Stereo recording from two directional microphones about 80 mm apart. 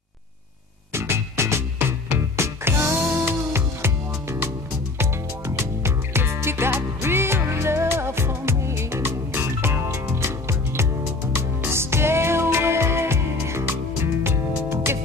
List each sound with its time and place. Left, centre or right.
0.9 s music: right
5.6 s music: right
11.6 s music: right